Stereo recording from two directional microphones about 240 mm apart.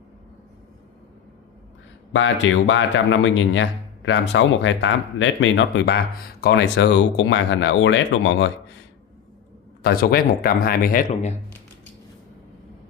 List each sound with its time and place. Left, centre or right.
2.1 s a man's voice: left
9.8 s speech: left